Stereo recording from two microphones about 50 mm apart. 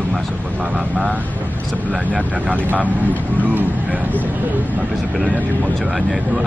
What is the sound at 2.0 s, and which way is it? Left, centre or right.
Speech, right.